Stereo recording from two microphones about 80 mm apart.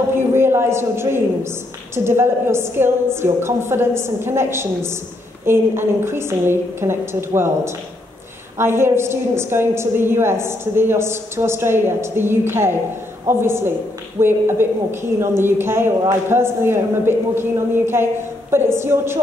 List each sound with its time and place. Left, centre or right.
0.1 s a woman's voice: right